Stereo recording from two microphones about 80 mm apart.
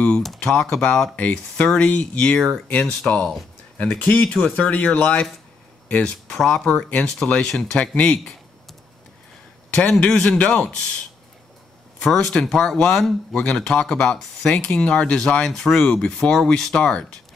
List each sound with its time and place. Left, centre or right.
0.4 s speech: centre
9.7 s speech: centre
12.0 s speech: centre